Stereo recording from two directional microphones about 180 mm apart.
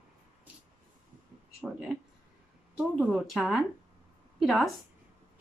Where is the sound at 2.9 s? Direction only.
Centre (ahead or behind).